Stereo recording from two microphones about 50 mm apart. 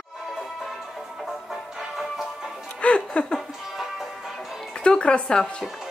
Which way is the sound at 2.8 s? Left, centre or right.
Left.